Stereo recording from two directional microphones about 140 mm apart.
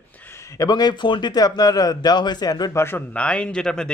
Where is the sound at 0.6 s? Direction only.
30° left (ahead or behind).